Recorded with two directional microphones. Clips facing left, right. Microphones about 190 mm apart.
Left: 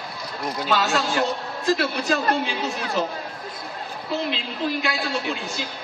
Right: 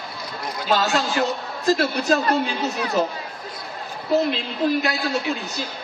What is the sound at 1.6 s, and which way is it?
Speech, 40° right (ahead or behind).